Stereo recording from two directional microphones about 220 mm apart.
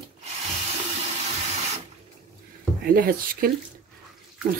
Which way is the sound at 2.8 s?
40° right (ahead or behind).